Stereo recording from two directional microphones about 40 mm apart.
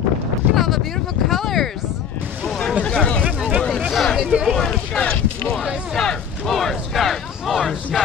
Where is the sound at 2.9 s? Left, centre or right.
Centre.